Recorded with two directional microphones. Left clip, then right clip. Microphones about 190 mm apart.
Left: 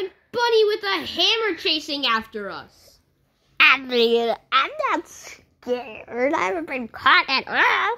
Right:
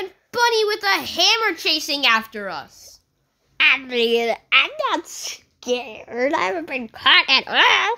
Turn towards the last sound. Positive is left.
turn(degrees=-15)  # may be behind; listen again after turning